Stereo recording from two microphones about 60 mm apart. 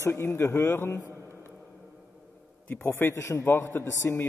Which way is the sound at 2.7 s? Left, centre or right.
Left.